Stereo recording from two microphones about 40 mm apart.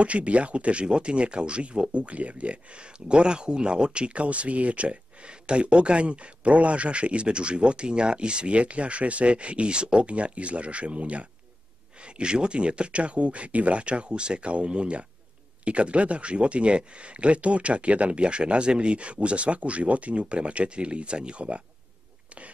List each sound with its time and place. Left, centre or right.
0.0 s speech: right